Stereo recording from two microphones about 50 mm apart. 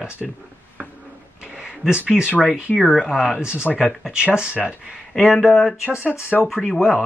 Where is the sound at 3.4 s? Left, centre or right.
Right.